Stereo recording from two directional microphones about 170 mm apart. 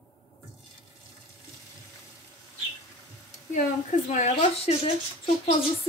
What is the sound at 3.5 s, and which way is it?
Speech, 45° left (ahead or behind).